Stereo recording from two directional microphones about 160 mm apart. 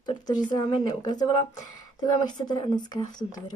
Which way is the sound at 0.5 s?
30° left (ahead or behind).